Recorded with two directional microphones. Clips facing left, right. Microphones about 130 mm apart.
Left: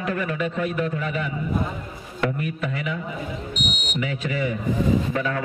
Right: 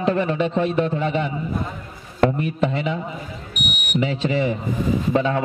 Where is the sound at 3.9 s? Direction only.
30° right (ahead or behind).